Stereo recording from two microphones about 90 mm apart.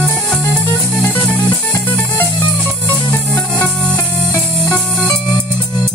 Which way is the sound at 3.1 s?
20° left (ahead or behind).